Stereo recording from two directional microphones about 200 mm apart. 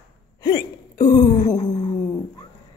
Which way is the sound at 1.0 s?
40° left (ahead or behind).